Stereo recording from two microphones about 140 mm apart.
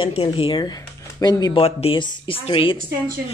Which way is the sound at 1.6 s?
45° left (ahead or behind).